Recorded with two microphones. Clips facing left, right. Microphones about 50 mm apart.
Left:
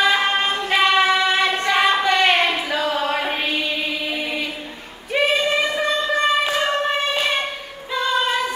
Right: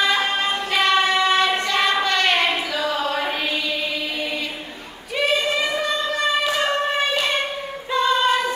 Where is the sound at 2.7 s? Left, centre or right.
Left.